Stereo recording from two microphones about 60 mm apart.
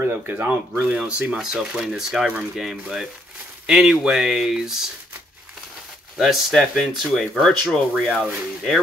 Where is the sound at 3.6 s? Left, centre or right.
Centre.